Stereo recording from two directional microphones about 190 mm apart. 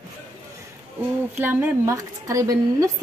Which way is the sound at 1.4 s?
10° right (ahead or behind).